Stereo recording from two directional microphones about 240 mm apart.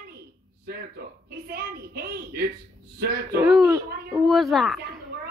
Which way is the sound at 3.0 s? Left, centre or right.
Right.